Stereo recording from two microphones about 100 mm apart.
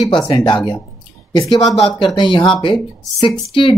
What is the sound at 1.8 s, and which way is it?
Speech, 70° left (ahead or behind).